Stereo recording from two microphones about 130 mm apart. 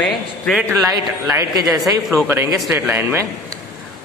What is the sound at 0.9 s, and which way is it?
A man's voice, 30° right (ahead or behind).